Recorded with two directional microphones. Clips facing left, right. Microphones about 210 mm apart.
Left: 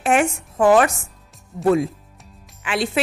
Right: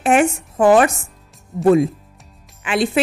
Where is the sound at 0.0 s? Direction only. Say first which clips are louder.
Right 3 dB; 20° right (ahead or behind).